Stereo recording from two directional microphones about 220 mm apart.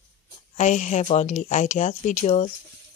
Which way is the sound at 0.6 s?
35° left (ahead or behind).